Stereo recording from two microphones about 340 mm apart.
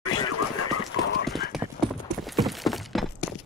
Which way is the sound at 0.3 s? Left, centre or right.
Left.